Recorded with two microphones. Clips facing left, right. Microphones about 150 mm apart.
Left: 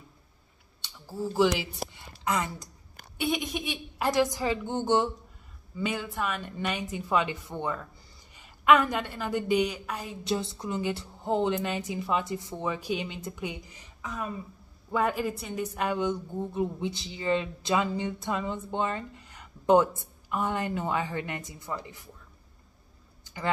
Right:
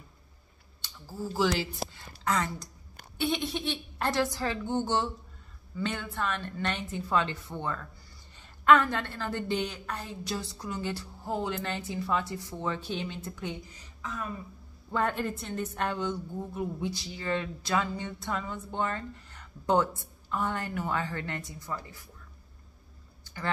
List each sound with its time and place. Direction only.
1.2 s a woman's voice: 15° left (ahead or behind)
10.2 s a woman's voice: 25° left (ahead or behind)
23.2 s a sound: 15° left (ahead or behind)